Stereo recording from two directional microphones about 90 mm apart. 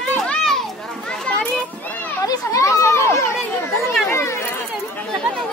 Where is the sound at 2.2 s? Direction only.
40° left (ahead or behind).